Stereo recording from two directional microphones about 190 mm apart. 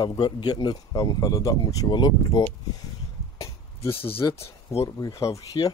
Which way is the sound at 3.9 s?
30° left (ahead or behind).